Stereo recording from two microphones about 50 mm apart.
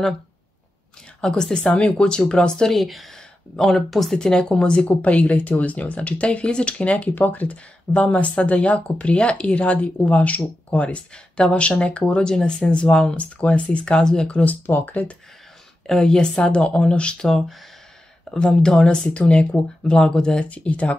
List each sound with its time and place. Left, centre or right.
1.2 s speech: centre
2.7 s speech: centre
4.2 s speech: centre
7.2 s speech: left; by 14.4 s centre
14.7 s speech: left
15.9 s speech: centre
19.1 s speech: left
20.4 s speech: left